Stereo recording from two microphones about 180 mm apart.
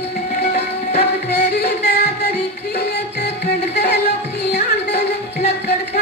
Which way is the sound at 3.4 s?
65° left (ahead or behind).